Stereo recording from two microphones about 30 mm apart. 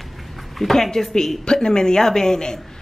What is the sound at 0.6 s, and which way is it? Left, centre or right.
Speech, centre.